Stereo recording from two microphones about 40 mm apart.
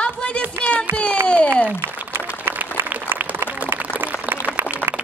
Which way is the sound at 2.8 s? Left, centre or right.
Right.